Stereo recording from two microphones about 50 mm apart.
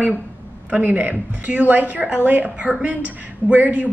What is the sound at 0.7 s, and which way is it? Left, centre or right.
A woman's voice, right.